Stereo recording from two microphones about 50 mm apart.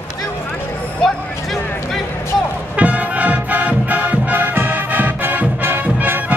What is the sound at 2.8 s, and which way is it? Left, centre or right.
Music, right.